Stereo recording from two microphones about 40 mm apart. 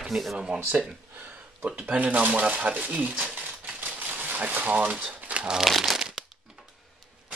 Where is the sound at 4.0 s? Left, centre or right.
Right.